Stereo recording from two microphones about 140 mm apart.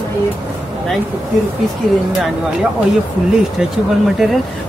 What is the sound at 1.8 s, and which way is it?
Speech, centre (ahead or behind).